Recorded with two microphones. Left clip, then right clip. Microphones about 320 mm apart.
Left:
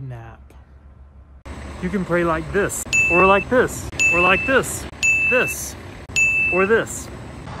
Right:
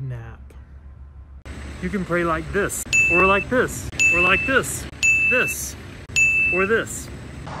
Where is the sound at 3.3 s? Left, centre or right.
Centre.